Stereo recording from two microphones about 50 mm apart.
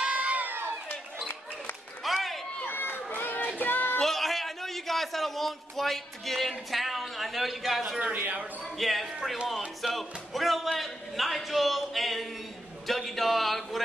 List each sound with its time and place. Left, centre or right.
0.0 s crowd: right
0.4 s crowd: right
2.0 s a sound: centre
2.6 s run: left
3.5 s music: left
4.0 s a sound: centre
8.1 s speech: right
8.7 s speech: centre